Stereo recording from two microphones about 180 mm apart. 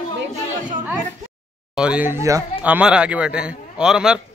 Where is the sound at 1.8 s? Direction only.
5° right (ahead or behind).